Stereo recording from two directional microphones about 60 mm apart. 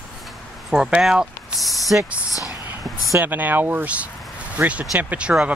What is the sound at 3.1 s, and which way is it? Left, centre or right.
Speech, right.